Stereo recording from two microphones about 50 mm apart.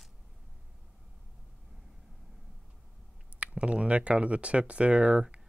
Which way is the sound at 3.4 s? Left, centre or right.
Right.